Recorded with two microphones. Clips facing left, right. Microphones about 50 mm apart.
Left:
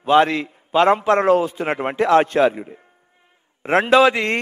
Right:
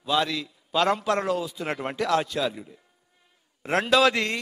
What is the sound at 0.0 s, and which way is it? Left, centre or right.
A man's voice, left.